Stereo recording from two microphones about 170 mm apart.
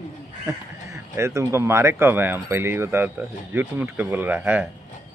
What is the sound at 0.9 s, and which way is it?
Speech, 15° right (ahead or behind).